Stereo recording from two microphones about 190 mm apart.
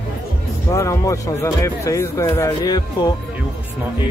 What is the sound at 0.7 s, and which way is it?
Speech, 15° left (ahead or behind).